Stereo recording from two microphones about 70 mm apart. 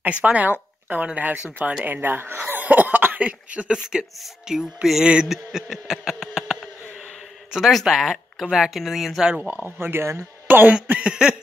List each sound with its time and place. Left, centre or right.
0.2 s speech: right; by 9.3 s centre
9.3 s speech: centre
9.7 s speech: right
10.5 s speech: right